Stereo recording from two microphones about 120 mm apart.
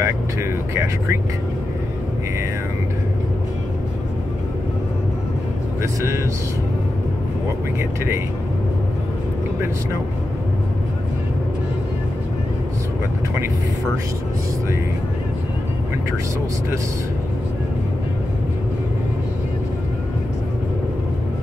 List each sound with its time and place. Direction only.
0.0 s speech: 25° right (ahead or behind)
5.8 s speech: 25° right (ahead or behind)